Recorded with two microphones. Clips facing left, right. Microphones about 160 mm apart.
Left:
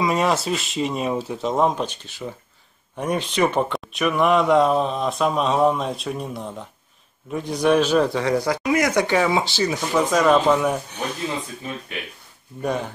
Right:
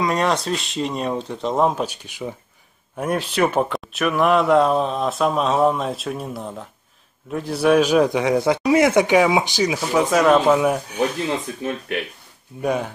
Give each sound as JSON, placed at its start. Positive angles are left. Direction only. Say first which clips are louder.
{"t": 0.0, "sound": "speech", "louder": "even", "side_deg": 5}
{"t": 9.1, "sound": "speech", "louder": "right 3 dB", "side_deg": -15}
{"t": 12.6, "sound": "speech", "louder": "right 3 dB", "side_deg": -10}